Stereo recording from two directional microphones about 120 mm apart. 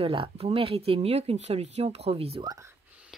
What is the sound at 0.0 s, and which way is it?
Speech, 50° right (ahead or behind).